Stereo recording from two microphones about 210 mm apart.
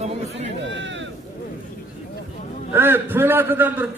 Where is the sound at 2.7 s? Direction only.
10° right (ahead or behind).